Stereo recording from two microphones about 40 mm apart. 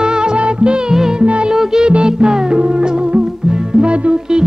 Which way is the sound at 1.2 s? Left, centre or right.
Right.